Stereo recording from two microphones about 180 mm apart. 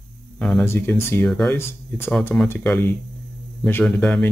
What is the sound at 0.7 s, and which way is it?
Speech, 15° left (ahead or behind).